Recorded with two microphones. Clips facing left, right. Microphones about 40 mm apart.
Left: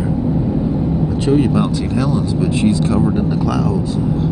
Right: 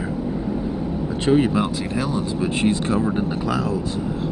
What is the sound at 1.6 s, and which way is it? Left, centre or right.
Speech, centre.